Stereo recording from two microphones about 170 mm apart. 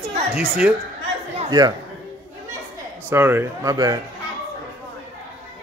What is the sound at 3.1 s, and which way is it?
Speech, 15° right (ahead or behind).